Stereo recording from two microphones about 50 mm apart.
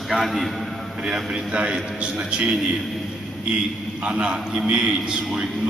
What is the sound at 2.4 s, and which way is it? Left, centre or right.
Speech, centre.